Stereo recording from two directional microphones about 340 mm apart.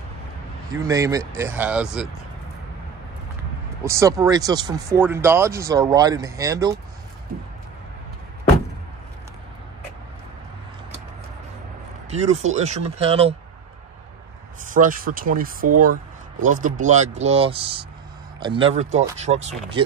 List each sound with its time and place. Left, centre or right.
0.7 s speech: centre
3.8 s speech: centre
12.1 s speech: centre
14.7 s speech: right